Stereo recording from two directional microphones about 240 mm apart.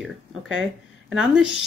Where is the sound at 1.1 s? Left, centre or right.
Centre.